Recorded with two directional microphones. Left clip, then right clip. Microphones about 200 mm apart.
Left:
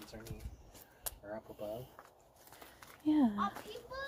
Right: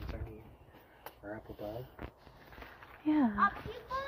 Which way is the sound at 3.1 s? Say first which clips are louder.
Right 1 dB; 15° left (ahead or behind).